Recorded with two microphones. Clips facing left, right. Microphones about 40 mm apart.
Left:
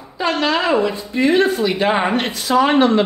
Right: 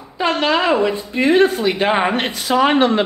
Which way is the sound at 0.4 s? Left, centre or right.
Centre.